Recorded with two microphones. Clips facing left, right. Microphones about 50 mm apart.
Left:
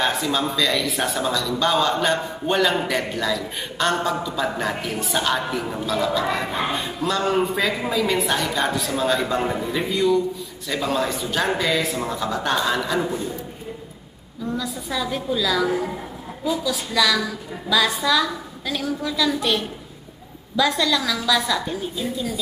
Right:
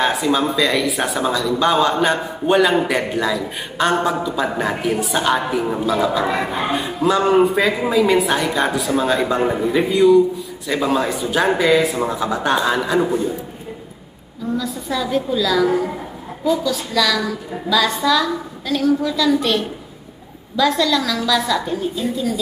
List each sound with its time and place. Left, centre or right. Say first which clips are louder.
0.0 s speech: right 5 dB; centre
14.6 s a woman's voice: right 3 dB; centre